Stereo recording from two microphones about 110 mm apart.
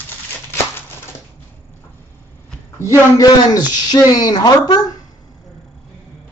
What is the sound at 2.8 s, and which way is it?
Speech, 30° left (ahead or behind).